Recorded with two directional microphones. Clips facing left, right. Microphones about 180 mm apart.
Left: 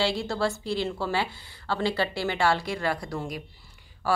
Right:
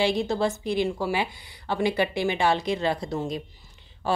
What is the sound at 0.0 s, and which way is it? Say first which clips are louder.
Speech: right 3 dB; 20° right (ahead or behind).